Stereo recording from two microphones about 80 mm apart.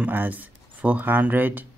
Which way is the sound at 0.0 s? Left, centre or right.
Right.